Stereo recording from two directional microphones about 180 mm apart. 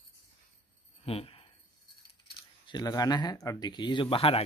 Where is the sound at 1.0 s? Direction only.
30° left (ahead or behind).